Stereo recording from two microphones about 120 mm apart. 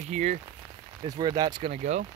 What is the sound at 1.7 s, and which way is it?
Speech, 70° right (ahead or behind).